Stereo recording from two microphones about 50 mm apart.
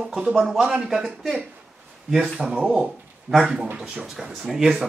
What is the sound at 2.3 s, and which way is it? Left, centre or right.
Speech, centre.